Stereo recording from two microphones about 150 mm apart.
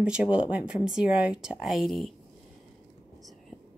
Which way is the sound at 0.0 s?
5° right (ahead or behind).